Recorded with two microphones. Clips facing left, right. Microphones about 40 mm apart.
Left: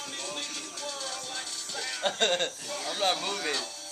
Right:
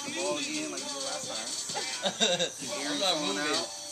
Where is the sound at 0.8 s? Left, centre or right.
Centre.